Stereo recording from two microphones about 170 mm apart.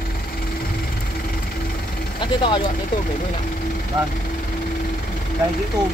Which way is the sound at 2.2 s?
30° left (ahead or behind).